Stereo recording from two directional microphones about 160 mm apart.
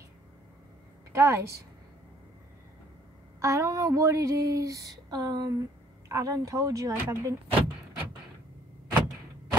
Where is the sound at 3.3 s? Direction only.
20° right (ahead or behind).